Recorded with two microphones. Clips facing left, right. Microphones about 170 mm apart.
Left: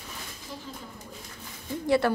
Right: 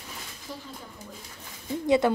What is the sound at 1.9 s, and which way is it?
Speech, 20° right (ahead or behind).